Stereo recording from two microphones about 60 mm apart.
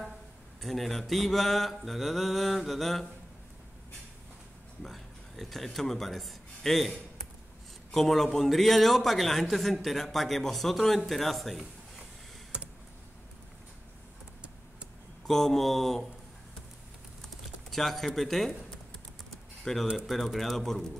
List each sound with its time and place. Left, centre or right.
0.6 s a man's voice: centre
4.8 s a man's voice: centre
7.9 s a man's voice: centre
12.5 s computer keyboard: centre
15.2 s a man's voice: centre
17.2 s typing: centre
20.1 s a man's voice: centre